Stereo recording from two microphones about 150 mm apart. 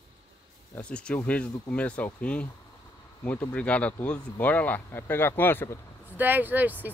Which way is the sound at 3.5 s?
10° left (ahead or behind).